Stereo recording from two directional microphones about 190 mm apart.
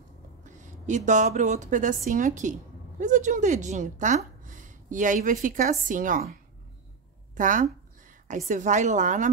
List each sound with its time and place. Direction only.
0.4 s a woman's voice: 40° right (ahead or behind)
7.3 s a sound: 45° right (ahead or behind)
8.5 s a woman's voice: 40° right (ahead or behind)